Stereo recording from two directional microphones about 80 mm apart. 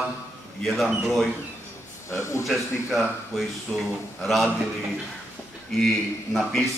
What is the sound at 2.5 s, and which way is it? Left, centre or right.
A man's voice, centre.